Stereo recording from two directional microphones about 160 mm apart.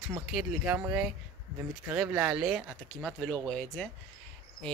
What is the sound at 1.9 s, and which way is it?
Speech, 5° right (ahead or behind).